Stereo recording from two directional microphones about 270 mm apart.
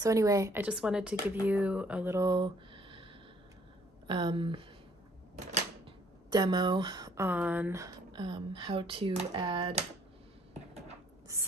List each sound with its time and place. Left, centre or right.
0.0 s speech: centre
4.1 s speech: centre
5.3 s a sound: right
6.3 s speech: centre